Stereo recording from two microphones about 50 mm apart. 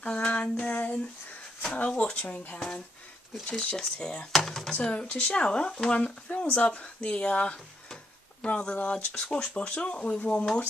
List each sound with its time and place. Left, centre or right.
0.0 s speech: left
3.5 s speech: centre
4.8 s speech: left